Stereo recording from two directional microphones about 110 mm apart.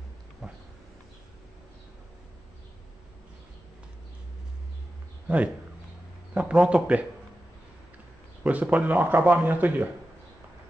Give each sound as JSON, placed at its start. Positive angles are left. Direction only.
{"t": 0.4, "sound": "a sound", "side_deg": 0}
{"t": 6.3, "sound": "speech", "side_deg": -10}
{"t": 8.5, "sound": "speech", "side_deg": -15}